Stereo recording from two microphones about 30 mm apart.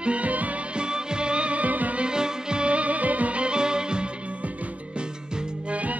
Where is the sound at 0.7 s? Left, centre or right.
Right.